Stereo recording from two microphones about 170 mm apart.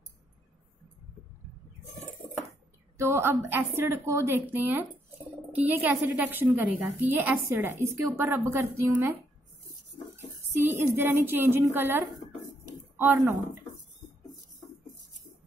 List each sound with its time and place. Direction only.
3.0 s a woman's voice: 15° right (ahead or behind)
10.1 s a sound: 15° right (ahead or behind)
11.1 s a woman's voice: 10° right (ahead or behind)